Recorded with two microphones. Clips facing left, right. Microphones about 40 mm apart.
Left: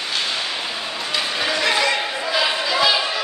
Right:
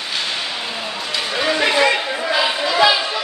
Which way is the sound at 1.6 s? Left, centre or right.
Centre.